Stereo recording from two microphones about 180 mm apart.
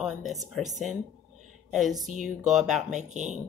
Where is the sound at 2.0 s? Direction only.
45° right (ahead or behind).